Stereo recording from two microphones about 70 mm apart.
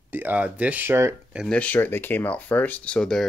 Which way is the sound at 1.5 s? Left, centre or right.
Left.